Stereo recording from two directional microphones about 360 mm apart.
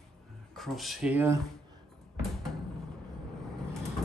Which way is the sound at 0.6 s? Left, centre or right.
Centre.